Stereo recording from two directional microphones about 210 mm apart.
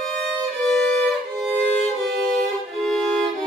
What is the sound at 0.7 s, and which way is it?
Violin, centre (ahead or behind).